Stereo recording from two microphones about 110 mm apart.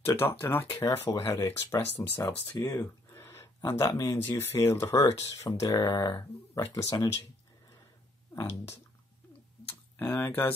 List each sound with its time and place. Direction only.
0.0 s speech: 20° left (ahead or behind)
8.4 s speech: 25° left (ahead or behind)
9.7 s tick-tock: 20° left (ahead or behind)